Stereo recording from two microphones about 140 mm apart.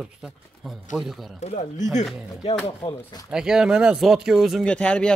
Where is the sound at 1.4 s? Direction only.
55° left (ahead or behind).